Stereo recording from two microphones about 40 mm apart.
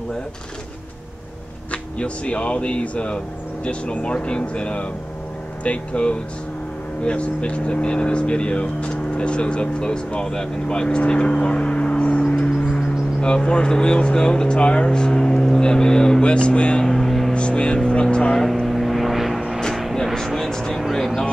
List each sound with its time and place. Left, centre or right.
1.7 s speech: left; by 16.3 s centre
16.3 s speech: left
16.8 s vehicle: centre
17.3 s vehicle: left
18.3 s vehicle: centre
20.2 s a sound: centre